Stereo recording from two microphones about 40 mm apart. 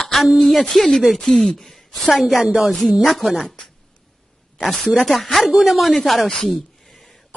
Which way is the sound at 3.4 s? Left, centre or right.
Centre.